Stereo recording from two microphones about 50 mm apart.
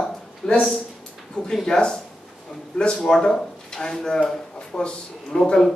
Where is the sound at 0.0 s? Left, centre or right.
Left.